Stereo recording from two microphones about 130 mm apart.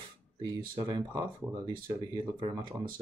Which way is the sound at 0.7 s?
30° right (ahead or behind).